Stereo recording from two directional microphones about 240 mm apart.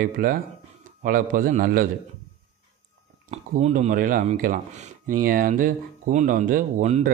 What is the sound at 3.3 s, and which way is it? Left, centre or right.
Speech, right.